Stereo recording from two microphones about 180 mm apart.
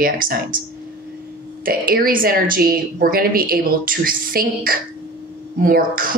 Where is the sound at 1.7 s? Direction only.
55° right (ahead or behind).